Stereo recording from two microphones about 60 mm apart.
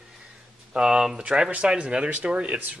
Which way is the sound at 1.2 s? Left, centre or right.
Centre.